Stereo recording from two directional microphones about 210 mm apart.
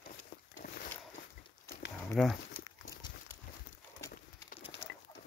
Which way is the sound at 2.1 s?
Centre (ahead or behind).